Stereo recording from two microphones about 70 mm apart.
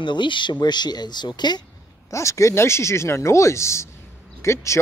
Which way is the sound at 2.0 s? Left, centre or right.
Left.